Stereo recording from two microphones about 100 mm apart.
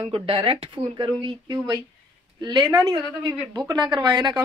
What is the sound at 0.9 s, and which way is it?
A woman's voice, 50° right (ahead or behind).